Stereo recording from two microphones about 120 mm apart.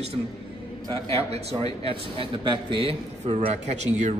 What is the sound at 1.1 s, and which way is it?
Speech, 60° right (ahead or behind).